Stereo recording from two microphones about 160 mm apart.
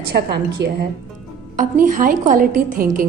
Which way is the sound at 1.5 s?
55° right (ahead or behind).